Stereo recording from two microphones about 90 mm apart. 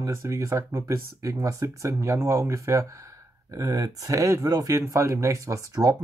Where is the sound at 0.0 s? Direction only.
35° right (ahead or behind).